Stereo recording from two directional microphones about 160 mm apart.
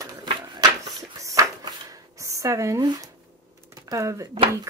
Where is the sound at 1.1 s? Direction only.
20° right (ahead or behind).